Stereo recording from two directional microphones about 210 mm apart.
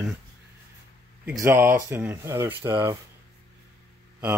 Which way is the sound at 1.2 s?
10° right (ahead or behind).